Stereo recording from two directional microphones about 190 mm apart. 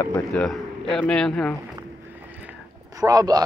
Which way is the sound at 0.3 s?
5° left (ahead or behind).